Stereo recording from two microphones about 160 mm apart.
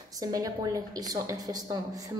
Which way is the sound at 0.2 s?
20° right (ahead or behind).